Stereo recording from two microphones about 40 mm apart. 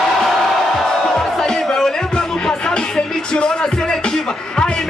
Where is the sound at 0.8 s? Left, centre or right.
Centre.